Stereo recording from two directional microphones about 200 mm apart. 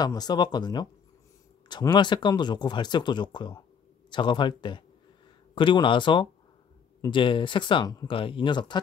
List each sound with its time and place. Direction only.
0.0 s speech: 20° left (ahead or behind)